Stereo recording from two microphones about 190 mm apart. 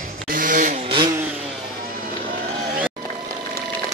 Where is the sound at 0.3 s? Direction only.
45° right (ahead or behind).